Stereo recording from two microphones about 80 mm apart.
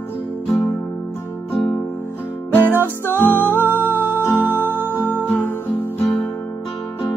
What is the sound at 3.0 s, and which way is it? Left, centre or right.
Music, left.